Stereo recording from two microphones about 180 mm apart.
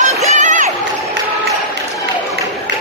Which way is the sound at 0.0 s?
40° right (ahead or behind).